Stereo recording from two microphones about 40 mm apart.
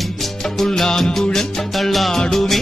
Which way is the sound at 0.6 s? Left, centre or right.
Centre.